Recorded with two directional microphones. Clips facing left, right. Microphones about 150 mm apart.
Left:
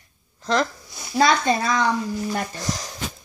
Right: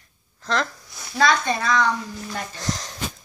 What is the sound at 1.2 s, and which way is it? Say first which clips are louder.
Speech: left 2 dB; 30° left (ahead or behind).